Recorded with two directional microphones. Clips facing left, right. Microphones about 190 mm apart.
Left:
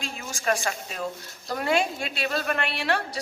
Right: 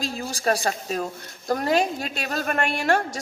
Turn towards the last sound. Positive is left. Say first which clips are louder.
# right 5 dB
turn(degrees=-45)  # may be behind; listen again after turning